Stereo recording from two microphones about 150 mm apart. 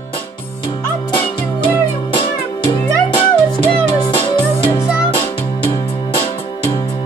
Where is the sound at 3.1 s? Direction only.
35° left (ahead or behind).